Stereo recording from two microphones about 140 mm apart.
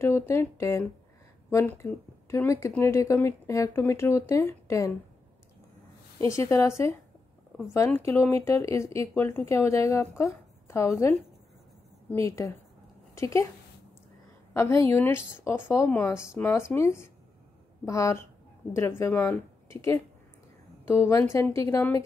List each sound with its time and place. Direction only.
0.0 s a woman's voice: 20° left (ahead or behind)
6.1 s a woman's voice: 20° left (ahead or behind)
7.7 s a woman's voice: 20° left (ahead or behind)
14.5 s a woman's voice: 20° left (ahead or behind)